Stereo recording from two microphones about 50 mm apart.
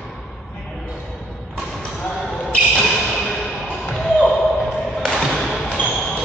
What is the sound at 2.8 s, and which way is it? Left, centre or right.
Basketball bounce, centre.